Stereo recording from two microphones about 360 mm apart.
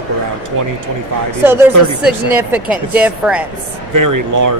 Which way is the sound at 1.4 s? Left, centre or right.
Centre.